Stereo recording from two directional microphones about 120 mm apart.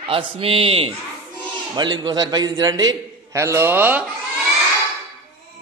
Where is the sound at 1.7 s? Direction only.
35° right (ahead or behind); by 4.0 s 15° right (ahead or behind).